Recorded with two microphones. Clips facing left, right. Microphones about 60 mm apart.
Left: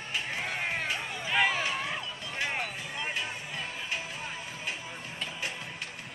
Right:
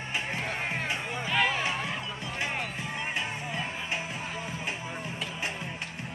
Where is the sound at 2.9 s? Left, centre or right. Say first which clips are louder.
Right 1 dB; right.